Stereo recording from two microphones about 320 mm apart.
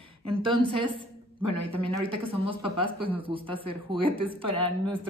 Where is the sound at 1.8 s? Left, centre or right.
Centre.